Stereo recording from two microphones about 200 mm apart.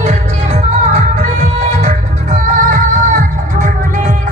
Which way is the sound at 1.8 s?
40° right (ahead or behind).